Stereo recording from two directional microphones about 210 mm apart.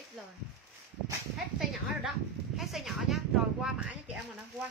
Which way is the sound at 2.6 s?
Centre (ahead or behind).